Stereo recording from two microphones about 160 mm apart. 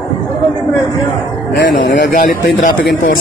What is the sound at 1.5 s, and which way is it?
Speech, 90° left.